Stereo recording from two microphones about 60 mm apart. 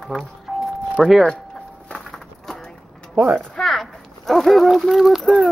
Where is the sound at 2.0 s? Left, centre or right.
Centre.